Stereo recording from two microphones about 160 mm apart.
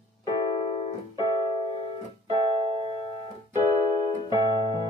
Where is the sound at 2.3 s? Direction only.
35° right (ahead or behind).